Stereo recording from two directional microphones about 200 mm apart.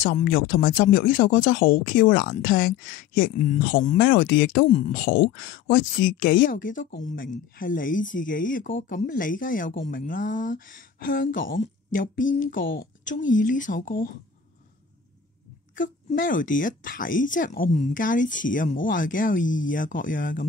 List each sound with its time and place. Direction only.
0.2 s speech: 45° left (ahead or behind)
15.7 s speech: 40° left (ahead or behind)